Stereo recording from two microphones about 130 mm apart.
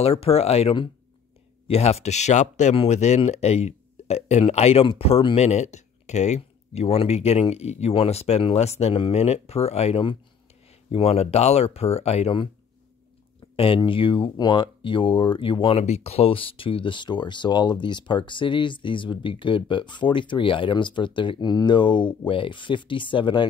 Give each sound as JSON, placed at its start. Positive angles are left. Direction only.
{"t": 0.0, "sound": "speech", "side_deg": 50}
{"t": 2.7, "sound": "speech", "side_deg": 50}
{"t": 13.6, "sound": "speech", "side_deg": 45}
{"t": 15.8, "sound": "speech", "side_deg": 55}